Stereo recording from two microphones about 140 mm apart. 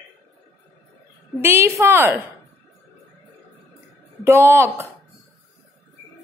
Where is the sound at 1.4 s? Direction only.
20° right (ahead or behind).